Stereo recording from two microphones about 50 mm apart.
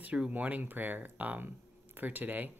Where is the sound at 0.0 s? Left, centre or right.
Right.